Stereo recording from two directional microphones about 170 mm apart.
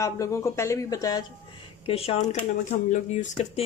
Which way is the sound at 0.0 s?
20° left (ahead or behind).